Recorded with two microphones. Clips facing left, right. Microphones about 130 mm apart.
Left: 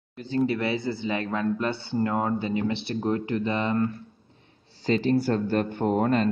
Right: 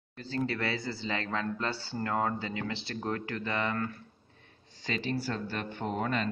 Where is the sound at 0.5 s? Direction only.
20° left (ahead or behind).